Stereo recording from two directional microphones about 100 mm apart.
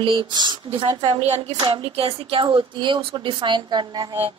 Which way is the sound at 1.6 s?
60° right (ahead or behind).